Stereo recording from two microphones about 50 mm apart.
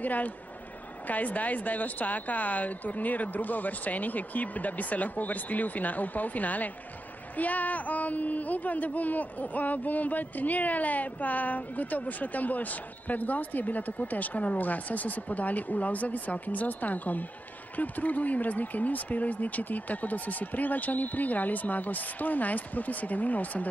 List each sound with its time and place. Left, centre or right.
0.0 s speech: left